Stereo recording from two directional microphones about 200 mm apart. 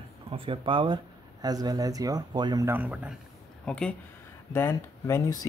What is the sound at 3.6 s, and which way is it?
Speech, 5° left (ahead or behind).